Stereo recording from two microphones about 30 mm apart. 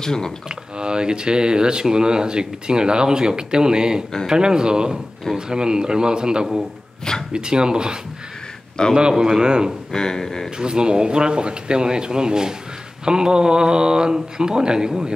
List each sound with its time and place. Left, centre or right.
0.0 s speech: centre
0.5 s speech: right
8.8 s speech: left
9.2 s speech: right
9.9 s speech: left
10.6 s speech: right